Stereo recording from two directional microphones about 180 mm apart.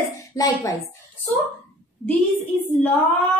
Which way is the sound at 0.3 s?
20° left (ahead or behind).